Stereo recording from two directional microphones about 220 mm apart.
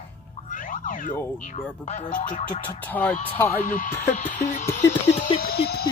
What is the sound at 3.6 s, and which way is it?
Speech, 35° left (ahead or behind).